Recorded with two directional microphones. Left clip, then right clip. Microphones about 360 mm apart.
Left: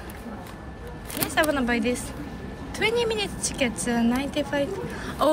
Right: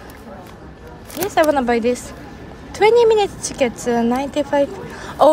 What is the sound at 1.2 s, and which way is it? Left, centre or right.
A woman's voice, centre.